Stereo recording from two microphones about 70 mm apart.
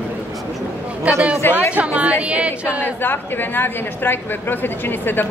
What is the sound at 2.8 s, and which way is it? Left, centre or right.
A woman's voice, left.